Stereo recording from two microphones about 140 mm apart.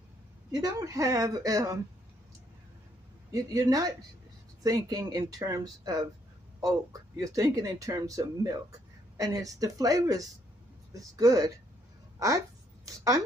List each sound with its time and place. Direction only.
0.5 s speech: 25° right (ahead or behind)
3.3 s speech: 25° right (ahead or behind)